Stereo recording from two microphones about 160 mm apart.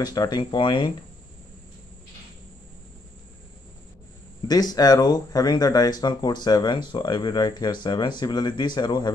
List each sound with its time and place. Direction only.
0.0 s speech: 25° left (ahead or behind)
4.5 s speech: 25° left (ahead or behind)